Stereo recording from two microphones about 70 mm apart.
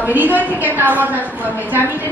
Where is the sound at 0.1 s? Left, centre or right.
Right.